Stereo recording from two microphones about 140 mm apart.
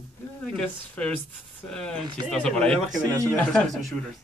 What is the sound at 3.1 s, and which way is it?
Speech, 20° right (ahead or behind).